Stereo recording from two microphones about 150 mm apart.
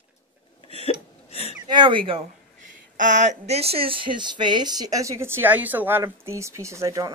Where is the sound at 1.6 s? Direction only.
30° right (ahead or behind).